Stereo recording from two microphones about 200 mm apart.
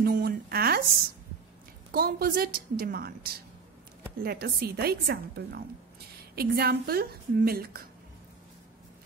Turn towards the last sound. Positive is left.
turn(degrees=-50)  # may be behind; listen again after turning